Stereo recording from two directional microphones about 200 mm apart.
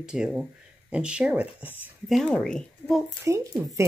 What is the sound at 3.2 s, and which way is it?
Speech, 15° right (ahead or behind).